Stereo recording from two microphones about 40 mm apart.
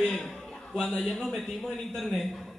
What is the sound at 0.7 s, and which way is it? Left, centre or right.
Speech, centre.